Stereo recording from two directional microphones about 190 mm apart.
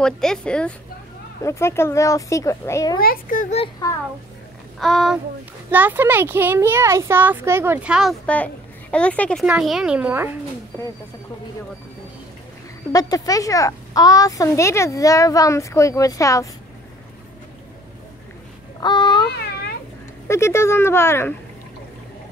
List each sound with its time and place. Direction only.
0.0 s a woman's voice: 5° left (ahead or behind)
3.0 s a child's voice: 50° left (ahead or behind)
4.7 s a woman's voice: centre (ahead or behind)
12.9 s a woman's voice: 20° left (ahead or behind)
18.8 s a sound: 25° left (ahead or behind)
20.2 s a woman's voice: 15° left (ahead or behind)